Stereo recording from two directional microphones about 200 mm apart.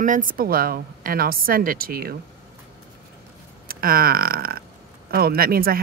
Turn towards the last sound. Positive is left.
turn(degrees=-50)  # may be behind; listen again after turning